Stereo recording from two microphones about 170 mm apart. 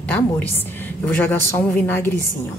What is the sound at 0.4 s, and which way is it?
A woman's voice, 10° left (ahead or behind).